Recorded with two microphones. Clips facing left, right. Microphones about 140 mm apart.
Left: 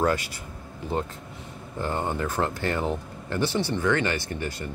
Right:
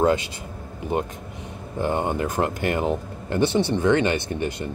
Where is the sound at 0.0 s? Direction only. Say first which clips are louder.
Right 4 dB; 20° right (ahead or behind).